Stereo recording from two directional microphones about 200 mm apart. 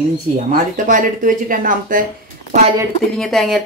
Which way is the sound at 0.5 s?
40° right (ahead or behind).